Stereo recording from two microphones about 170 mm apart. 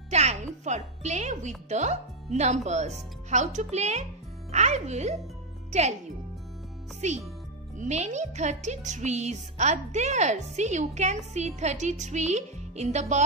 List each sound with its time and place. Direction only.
0.1 s music: 40° right (ahead or behind)
1.7 s speech: 40° right (ahead or behind)
7.0 s speech: 45° right (ahead or behind)